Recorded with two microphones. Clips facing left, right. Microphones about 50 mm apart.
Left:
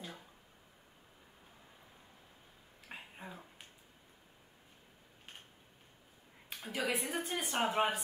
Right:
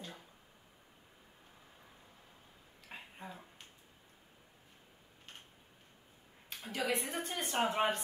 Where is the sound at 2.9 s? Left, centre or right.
Centre.